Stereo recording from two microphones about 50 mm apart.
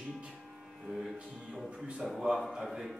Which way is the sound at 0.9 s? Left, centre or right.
Centre.